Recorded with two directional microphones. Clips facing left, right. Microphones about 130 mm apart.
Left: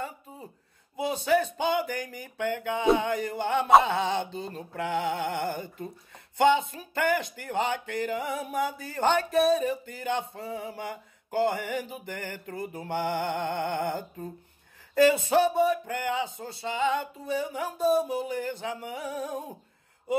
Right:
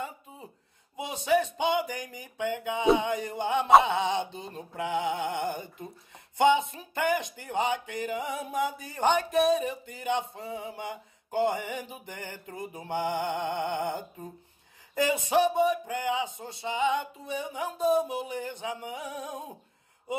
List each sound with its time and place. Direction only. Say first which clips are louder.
0.9 s speech: left 1 dB; 20° right (ahead or behind)
3.8 s a sound: even; 20° right (ahead or behind)
6.3 s speech: left 1 dB; 20° right (ahead or behind)